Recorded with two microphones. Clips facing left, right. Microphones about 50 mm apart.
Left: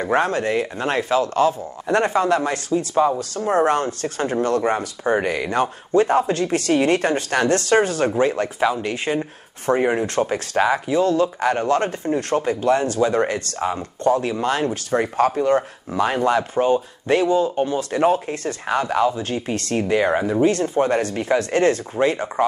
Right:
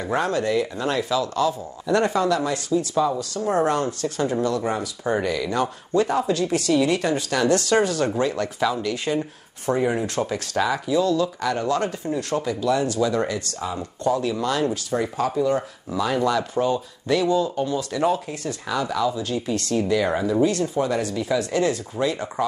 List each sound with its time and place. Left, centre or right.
0.0 s speech: left